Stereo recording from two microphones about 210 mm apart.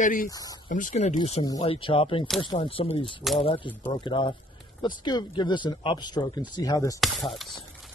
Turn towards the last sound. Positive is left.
turn(degrees=0)  # may be behind; listen again after turning